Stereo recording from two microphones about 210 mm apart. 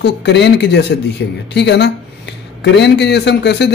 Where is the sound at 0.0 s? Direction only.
55° left (ahead or behind).